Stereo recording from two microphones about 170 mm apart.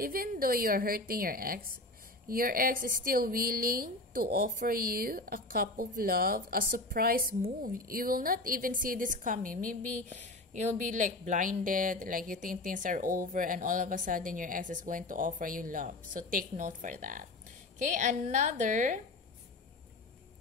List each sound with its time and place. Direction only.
0.0 s a woman's voice: 60° right (ahead or behind)